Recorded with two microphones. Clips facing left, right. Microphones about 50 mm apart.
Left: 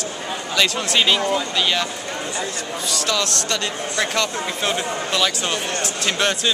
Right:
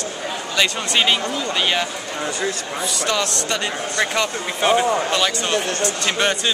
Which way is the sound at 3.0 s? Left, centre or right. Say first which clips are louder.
Right 1 dB; centre.